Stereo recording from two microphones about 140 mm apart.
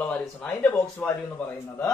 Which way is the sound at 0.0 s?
10° left (ahead or behind).